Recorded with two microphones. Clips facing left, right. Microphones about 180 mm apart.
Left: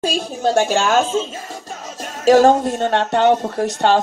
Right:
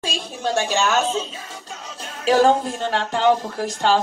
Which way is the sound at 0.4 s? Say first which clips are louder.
Left 4 dB; 45° left (ahead or behind).